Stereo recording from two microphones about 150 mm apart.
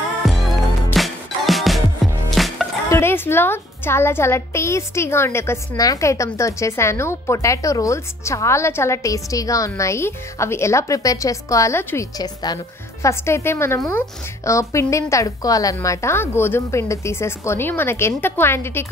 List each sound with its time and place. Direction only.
0.2 s music: centre (ahead or behind)
2.9 s a woman's voice: 15° left (ahead or behind)